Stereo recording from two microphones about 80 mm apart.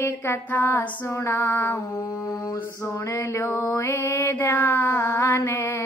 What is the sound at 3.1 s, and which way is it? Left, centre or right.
Mantra, left.